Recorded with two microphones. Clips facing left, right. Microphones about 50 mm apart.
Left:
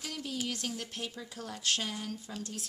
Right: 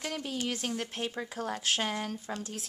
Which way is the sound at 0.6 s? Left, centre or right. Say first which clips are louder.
Right 4 dB; right.